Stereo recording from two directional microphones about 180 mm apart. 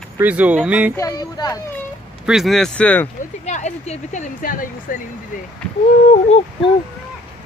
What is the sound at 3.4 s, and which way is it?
Speech, 40° left (ahead or behind).